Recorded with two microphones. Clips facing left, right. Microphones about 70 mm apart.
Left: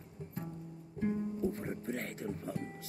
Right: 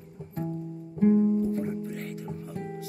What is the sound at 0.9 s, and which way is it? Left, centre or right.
Music, right.